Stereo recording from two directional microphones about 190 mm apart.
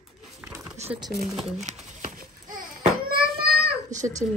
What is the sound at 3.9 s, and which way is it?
Speech, 40° right (ahead or behind).